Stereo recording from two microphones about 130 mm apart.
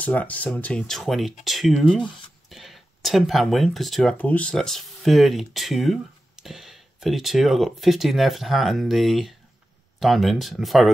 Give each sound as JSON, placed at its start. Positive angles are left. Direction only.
{"t": 0.0, "sound": "speech", "side_deg": 10}